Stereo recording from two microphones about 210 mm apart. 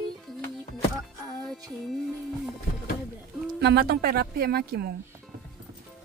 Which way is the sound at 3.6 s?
50° right (ahead or behind).